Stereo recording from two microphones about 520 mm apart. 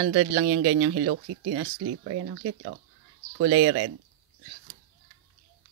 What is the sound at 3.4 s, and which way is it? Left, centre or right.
Speech, right.